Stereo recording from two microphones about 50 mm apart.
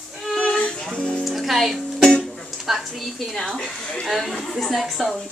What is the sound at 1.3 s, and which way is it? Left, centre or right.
Music, centre.